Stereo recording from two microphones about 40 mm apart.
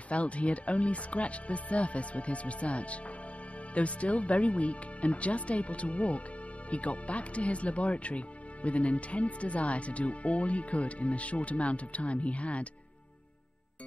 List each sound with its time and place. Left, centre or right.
0.1 s speech: left